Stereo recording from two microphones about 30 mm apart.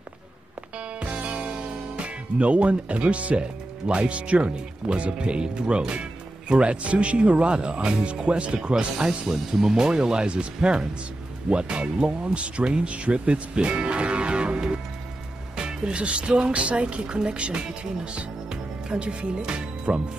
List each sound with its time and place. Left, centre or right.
0.7 s music: right
2.0 s speech: right
9.3 s speech: centre; by 20.0 s right